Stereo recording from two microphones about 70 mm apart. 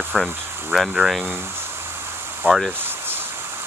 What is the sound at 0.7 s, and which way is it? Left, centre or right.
Speech, centre.